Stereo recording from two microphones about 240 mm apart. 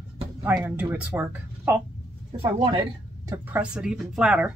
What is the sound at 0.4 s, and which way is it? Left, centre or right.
Speech, centre.